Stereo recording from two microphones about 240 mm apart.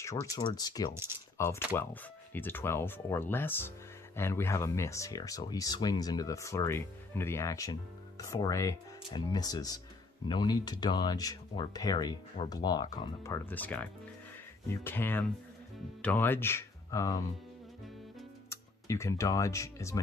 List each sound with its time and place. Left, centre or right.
0.0 s speech: centre
18.5 s speech: centre